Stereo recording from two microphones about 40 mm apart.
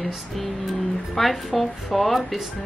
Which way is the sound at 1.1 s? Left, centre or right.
Centre.